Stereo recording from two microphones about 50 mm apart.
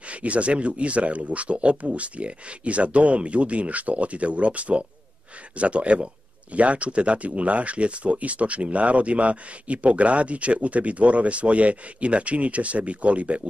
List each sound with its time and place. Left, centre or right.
0.1 s speech: right